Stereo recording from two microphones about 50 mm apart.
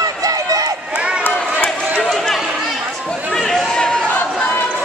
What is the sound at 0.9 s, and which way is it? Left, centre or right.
Run, right.